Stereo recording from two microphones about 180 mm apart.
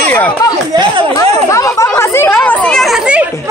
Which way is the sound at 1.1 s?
20° left (ahead or behind).